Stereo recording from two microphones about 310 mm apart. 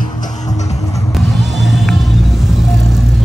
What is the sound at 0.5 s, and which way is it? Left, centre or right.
Music, centre.